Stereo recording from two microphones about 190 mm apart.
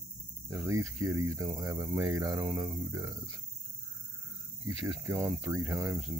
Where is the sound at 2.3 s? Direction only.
Centre (ahead or behind).